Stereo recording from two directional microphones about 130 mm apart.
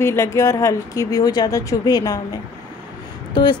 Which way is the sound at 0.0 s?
20° left (ahead or behind).